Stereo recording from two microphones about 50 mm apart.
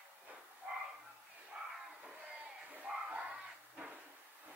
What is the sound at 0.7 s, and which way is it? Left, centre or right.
Bow-wow, right.